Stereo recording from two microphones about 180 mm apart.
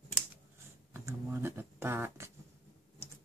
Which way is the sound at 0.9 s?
10° right (ahead or behind).